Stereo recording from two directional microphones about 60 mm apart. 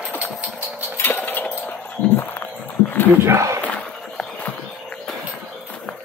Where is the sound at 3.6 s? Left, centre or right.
Centre.